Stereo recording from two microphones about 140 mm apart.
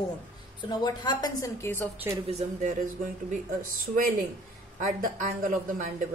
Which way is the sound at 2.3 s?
60° right (ahead or behind).